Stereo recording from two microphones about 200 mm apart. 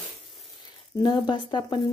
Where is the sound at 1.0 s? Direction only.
25° left (ahead or behind).